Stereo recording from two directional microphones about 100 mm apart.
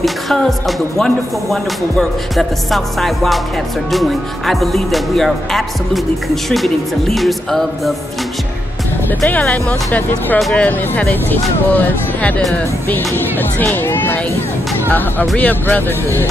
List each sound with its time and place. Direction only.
0.0 s speech: centre (ahead or behind)
9.2 s speech: 15° left (ahead or behind)